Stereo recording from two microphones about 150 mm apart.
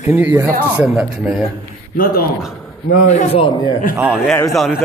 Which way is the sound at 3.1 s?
45° left (ahead or behind).